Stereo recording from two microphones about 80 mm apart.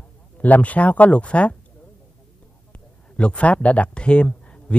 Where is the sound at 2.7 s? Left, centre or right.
Centre.